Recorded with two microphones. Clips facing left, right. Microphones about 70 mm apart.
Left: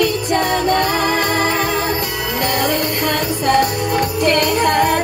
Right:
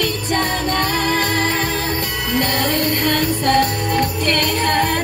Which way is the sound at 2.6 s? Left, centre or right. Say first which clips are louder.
Even; centre.